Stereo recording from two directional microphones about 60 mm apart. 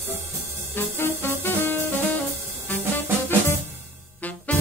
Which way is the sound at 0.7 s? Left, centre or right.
Left.